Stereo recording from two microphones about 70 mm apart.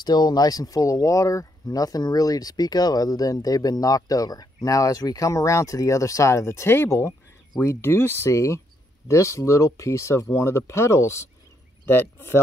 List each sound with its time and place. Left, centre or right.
0.0 s speech: left
11.8 s speech: left